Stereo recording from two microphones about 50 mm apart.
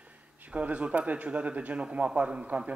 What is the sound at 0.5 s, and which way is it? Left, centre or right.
A man's voice, right.